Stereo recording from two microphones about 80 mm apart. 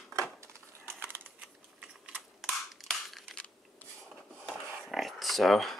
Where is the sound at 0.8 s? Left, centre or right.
Right.